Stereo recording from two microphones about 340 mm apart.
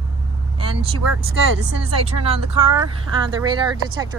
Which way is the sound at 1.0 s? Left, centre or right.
Right.